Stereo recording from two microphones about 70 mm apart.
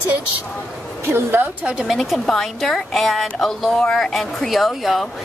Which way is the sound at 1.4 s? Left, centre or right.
Right.